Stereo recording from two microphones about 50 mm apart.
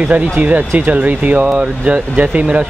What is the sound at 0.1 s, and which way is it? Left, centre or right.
Speech, right.